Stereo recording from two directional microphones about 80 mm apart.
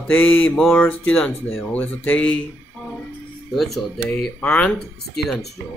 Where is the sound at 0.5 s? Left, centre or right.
Centre.